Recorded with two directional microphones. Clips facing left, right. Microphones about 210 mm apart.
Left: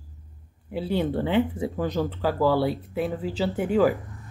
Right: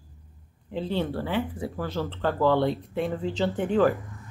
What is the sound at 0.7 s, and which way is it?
Speech, 10° left (ahead or behind).